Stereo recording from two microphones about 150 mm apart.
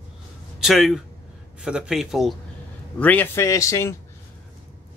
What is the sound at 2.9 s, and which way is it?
A man's voice, 10° left (ahead or behind).